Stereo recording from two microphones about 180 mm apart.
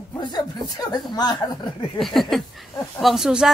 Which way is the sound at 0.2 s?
25° left (ahead or behind).